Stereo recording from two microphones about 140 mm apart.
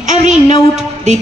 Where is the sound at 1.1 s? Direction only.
55° right (ahead or behind).